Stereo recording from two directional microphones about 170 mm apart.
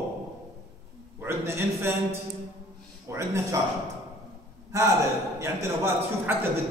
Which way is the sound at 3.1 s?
15° right (ahead or behind).